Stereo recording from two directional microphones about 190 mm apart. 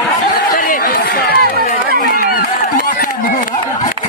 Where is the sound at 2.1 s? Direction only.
50° left (ahead or behind).